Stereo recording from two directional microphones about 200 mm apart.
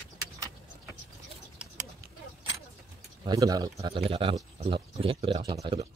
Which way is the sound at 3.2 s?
20° right (ahead or behind).